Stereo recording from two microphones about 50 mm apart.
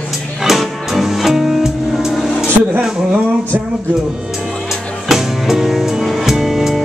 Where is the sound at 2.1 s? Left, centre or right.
Centre.